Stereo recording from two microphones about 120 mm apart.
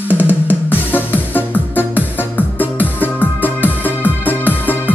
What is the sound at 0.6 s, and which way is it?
Music, 15° left (ahead or behind).